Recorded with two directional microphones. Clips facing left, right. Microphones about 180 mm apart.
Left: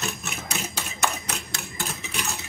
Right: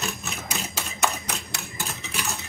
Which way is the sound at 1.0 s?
Centre (ahead or behind).